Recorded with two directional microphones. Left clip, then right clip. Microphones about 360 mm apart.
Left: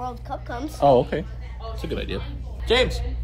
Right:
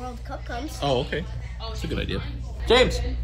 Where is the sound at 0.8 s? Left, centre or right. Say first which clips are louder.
Left 9 dB; left.